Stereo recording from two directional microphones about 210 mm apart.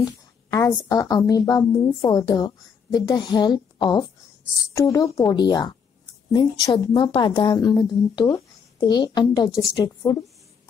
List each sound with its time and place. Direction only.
0.5 s a woman's voice: 15° left (ahead or behind)